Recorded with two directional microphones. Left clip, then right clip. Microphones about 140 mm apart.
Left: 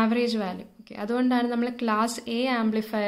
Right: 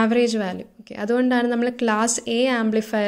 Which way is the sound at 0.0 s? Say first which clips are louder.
Right 5 dB; 30° right (ahead or behind).